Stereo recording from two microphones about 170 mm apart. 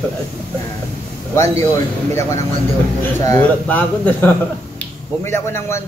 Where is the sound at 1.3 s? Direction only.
15° left (ahead or behind).